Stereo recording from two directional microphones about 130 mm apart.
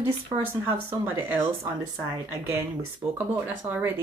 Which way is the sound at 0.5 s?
20° right (ahead or behind).